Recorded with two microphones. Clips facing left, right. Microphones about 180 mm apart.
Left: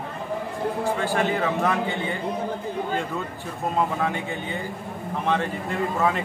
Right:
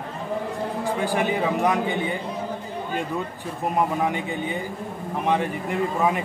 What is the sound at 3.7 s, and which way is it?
Speech, 15° right (ahead or behind).